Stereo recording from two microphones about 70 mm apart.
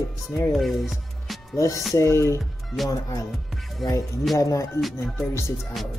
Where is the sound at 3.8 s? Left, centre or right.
Left.